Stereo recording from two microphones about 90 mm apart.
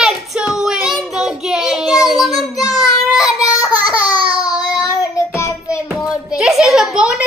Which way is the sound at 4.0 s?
50° left (ahead or behind).